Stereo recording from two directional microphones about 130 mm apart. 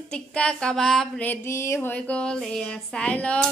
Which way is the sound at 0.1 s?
5° left (ahead or behind).